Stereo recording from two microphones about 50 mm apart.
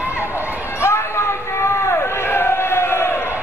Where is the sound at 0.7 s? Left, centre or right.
Left.